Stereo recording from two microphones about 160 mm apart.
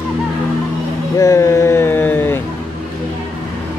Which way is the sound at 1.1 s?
20° left (ahead or behind).